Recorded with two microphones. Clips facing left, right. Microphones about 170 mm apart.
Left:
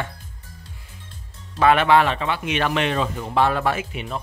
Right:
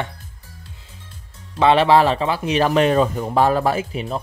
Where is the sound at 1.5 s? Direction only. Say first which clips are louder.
Right 2 dB; 30° right (ahead or behind).